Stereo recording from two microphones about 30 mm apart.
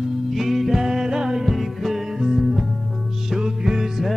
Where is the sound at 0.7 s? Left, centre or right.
Centre.